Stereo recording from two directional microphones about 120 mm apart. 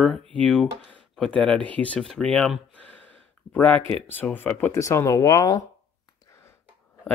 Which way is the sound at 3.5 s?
10° left (ahead or behind).